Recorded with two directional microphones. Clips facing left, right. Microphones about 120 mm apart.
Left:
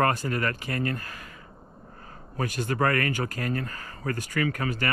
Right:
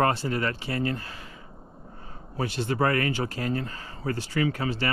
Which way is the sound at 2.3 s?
45° left (ahead or behind).